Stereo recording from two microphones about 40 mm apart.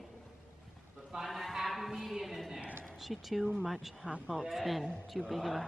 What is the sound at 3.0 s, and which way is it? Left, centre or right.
Speech, centre.